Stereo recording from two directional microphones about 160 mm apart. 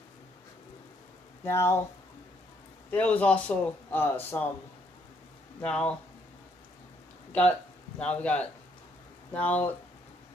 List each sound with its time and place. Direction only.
1.4 s speech: 15° left (ahead or behind)
2.9 s speech: 10° left (ahead or behind)
5.6 s speech: 5° left (ahead or behind)
8.0 s speech: 10° left (ahead or behind)